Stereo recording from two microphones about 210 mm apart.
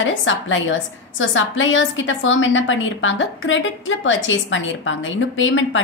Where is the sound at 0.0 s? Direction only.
65° left (ahead or behind).